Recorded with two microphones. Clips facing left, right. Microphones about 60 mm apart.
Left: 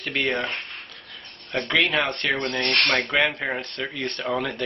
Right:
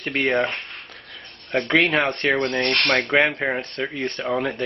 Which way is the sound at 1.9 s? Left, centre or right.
Centre.